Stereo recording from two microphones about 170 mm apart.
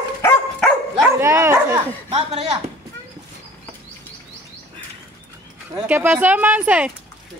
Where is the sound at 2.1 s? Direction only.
35° right (ahead or behind).